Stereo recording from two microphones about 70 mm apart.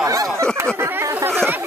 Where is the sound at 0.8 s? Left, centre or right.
Right.